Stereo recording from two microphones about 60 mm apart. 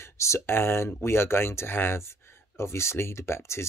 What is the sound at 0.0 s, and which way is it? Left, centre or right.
Speech, left.